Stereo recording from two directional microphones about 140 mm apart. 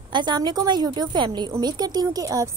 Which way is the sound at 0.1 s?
35° right (ahead or behind).